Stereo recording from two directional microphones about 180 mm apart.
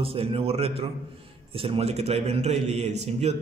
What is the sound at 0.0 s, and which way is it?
A man's voice, 30° right (ahead or behind).